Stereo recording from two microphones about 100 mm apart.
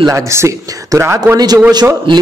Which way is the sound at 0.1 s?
30° right (ahead or behind).